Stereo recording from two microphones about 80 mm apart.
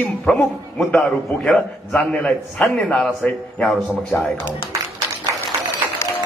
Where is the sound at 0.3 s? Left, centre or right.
Centre.